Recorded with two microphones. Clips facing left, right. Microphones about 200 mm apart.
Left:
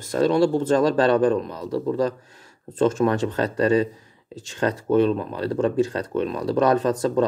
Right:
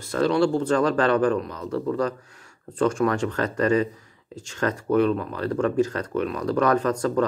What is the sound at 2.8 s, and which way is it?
Speech, 25° left (ahead or behind).